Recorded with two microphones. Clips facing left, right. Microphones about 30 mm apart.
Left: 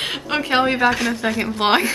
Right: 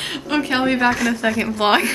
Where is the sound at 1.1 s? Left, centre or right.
Left.